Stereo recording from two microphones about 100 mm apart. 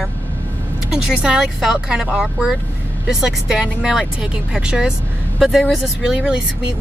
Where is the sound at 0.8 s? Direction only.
5° right (ahead or behind).